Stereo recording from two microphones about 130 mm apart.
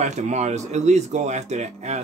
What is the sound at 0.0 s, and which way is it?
Speech, 60° right (ahead or behind).